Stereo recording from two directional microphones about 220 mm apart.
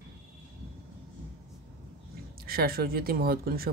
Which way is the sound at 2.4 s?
45° right (ahead or behind).